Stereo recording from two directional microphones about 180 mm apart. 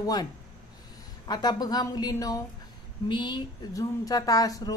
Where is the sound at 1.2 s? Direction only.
20° left (ahead or behind).